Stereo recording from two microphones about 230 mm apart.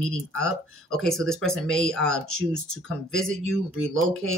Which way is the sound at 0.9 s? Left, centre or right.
Centre.